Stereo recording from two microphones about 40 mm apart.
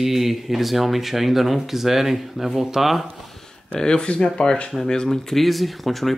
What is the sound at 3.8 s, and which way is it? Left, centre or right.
Speech, centre.